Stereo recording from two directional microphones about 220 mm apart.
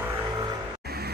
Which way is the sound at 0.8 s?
45° right (ahead or behind).